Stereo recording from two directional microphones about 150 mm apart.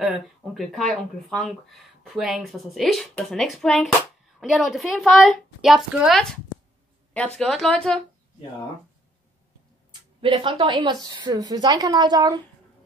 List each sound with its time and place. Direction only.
0.6 s speech: centre (ahead or behind)
7.3 s speech: centre (ahead or behind)
10.2 s a woman's voice: 35° right (ahead or behind)